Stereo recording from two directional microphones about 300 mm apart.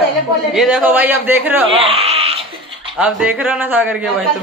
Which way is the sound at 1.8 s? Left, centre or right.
Centre.